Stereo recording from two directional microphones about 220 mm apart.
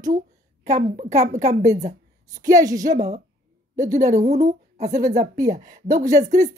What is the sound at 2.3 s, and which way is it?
Speech, 15° right (ahead or behind).